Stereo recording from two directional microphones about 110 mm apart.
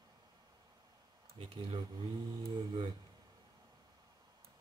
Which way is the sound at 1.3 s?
55° right (ahead or behind).